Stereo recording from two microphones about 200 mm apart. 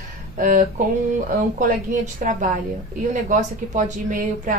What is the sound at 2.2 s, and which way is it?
A woman's voice, 40° right (ahead or behind).